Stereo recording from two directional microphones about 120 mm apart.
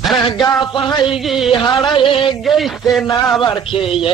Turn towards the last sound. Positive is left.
turn(degrees=50)  # may be behind; listen again after turning